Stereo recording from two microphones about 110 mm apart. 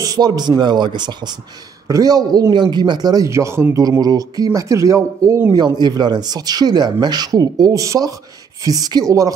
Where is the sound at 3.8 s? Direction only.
35° right (ahead or behind).